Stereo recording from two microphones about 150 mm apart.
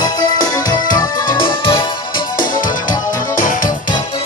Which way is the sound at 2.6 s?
65° left (ahead or behind).